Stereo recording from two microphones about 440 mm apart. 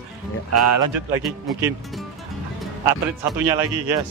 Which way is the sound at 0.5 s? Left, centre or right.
Right.